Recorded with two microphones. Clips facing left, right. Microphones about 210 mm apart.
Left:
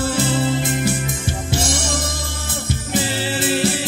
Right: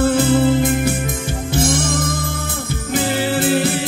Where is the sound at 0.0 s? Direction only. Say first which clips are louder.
Right 6 dB; 55° right (ahead or behind).